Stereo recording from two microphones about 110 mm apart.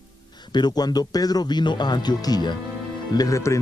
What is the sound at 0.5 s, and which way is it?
Speech, 40° left (ahead or behind).